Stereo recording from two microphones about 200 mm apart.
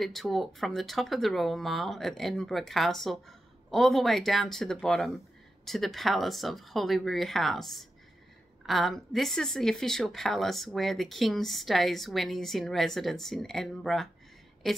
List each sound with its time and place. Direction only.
0.0 s a woman's voice: centre (ahead or behind)